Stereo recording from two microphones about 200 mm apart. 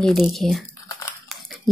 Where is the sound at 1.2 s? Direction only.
Centre (ahead or behind).